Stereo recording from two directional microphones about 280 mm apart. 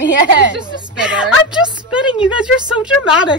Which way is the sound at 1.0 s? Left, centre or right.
Centre.